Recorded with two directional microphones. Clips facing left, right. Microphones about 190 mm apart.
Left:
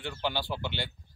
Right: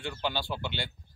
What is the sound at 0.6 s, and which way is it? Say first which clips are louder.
Speech: even; 15° right (ahead or behind).